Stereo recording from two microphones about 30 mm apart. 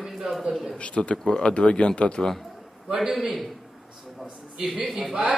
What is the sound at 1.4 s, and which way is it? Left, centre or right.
Speech, left.